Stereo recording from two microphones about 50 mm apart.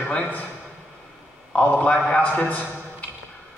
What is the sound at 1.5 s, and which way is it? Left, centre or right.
A man's voice, left.